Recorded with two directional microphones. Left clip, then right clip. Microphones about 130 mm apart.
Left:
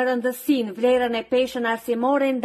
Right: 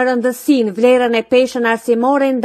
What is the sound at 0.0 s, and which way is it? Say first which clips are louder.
Speech: right 7 dB; 40° right (ahead or behind).